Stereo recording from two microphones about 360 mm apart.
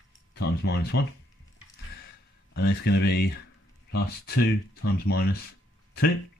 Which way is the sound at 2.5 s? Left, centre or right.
Left.